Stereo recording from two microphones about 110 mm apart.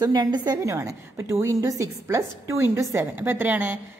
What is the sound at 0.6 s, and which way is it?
A woman's voice, 25° right (ahead or behind).